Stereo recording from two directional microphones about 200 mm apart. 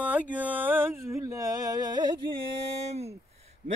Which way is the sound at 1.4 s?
20° right (ahead or behind).